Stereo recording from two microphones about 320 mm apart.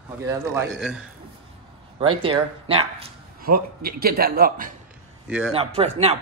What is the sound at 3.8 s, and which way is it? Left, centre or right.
Speech, right.